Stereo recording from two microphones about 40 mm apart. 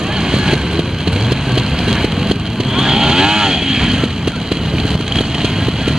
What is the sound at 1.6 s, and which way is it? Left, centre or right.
Vehicle, centre.